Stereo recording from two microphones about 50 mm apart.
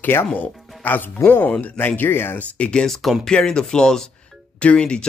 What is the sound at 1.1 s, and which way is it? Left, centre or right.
Speech, left.